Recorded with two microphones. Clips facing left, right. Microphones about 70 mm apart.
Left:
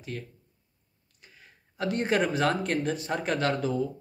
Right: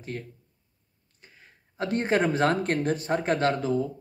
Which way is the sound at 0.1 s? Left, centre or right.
Right.